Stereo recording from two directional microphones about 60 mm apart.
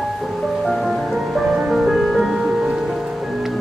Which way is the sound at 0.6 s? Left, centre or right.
Centre.